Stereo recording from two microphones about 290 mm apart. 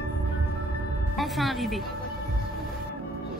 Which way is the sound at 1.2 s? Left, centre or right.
Centre.